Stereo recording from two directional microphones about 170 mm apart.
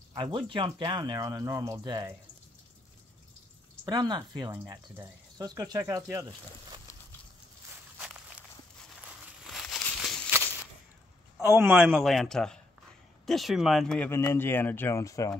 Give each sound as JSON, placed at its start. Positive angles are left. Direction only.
{"t": 0.1, "sound": "speech", "side_deg": -30}
{"t": 3.8, "sound": "speech", "side_deg": -25}
{"t": 8.0, "sound": "walk", "side_deg": -5}
{"t": 9.4, "sound": "a sound", "side_deg": 0}
{"t": 10.3, "sound": "a sound", "side_deg": -10}
{"t": 11.9, "sound": "a man's voice", "side_deg": 0}